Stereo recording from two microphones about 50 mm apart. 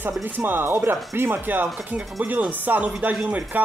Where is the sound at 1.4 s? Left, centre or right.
Right.